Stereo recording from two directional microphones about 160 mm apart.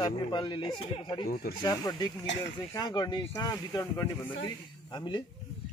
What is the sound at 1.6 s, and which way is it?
Speech, 25° left (ahead or behind).